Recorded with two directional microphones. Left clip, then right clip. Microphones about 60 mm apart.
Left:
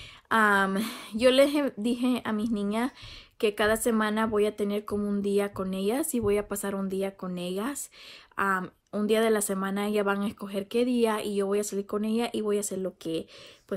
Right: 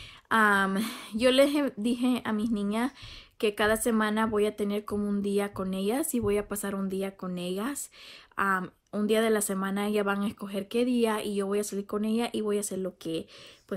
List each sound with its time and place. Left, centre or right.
0.3 s a woman's voice: left